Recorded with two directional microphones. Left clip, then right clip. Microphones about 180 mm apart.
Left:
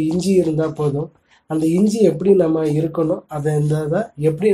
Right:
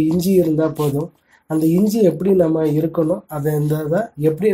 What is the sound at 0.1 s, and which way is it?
Speech, 25° right (ahead or behind).